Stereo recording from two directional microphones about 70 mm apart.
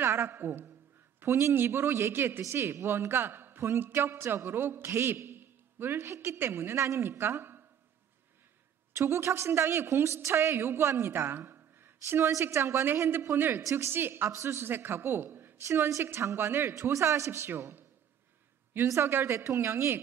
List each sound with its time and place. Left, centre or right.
0.0 s a man's voice: right
8.9 s a man's voice: right
12.3 s a man's voice: right
13.6 s a man's voice: right
16.7 s a man's voice: right
18.9 s a man's voice: right